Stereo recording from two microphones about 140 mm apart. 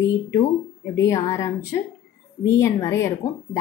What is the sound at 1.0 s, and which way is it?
Speech, 25° left (ahead or behind).